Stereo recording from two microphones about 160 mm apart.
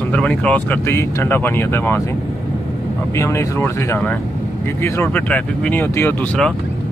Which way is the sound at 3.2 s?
15° left (ahead or behind).